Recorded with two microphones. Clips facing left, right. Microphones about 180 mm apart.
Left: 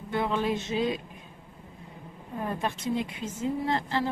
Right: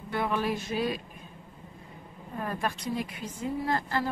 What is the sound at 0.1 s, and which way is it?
Speech, 20° left (ahead or behind).